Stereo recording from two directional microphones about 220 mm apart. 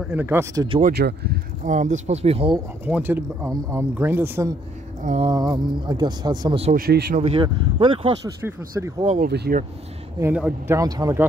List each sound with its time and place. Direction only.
0.0 s speech: 5° right (ahead or behind)
0.7 s speech: 35° right (ahead or behind)
0.9 s speech: 45° right (ahead or behind); by 2.6 s 25° right (ahead or behind)
2.8 s speech: 10° right (ahead or behind)
5.0 s speech: 30° right (ahead or behind)
5.3 s speech: 20° right (ahead or behind)
6.7 s speech: 45° right (ahead or behind)
7.2 s speech: 25° right (ahead or behind)
8.5 s speech: 15° right (ahead or behind)
9.0 s speech: 30° right (ahead or behind)
9.3 s speech: 50° right (ahead or behind)
10.1 s speech: 10° right (ahead or behind)